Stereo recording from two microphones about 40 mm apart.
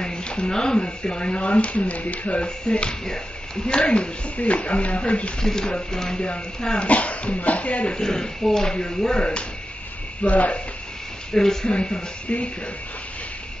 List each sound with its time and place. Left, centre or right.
0.0 s a sound: left
0.7 s speech: left
2.4 s speech: left
5.4 s speech: centre
6.9 s speech: left
7.9 s speech: centre
10.2 s speech: left
11.3 s speech: centre; by 12.4 s left